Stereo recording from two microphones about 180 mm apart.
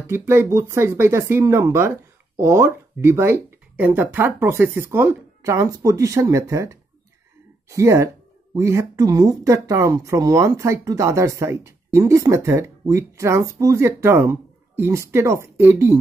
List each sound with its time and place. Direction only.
0.0 s speech: 10° right (ahead or behind)